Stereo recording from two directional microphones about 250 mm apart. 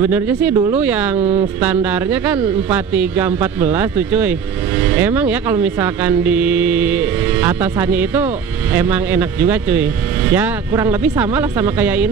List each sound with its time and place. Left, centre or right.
0.0 s speech: centre
1.2 s speech: right
1.6 s speech: centre